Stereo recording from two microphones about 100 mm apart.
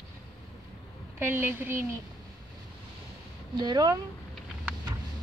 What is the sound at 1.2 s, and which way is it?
Speech, 25° right (ahead or behind).